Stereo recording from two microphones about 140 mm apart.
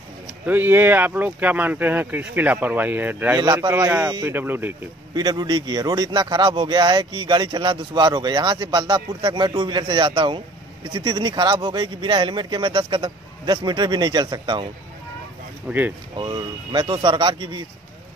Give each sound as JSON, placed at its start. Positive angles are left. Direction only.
{"t": 0.5, "sound": "speech", "side_deg": -15}
{"t": 3.3, "sound": "a man's voice", "side_deg": -30}
{"t": 3.7, "sound": "speech", "side_deg": -20}
{"t": 5.1, "sound": "speech", "side_deg": -30}
{"t": 15.7, "sound": "speech", "side_deg": -10}
{"t": 16.2, "sound": "speech", "side_deg": -30}